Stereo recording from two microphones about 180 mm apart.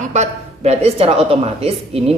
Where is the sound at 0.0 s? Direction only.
40° right (ahead or behind).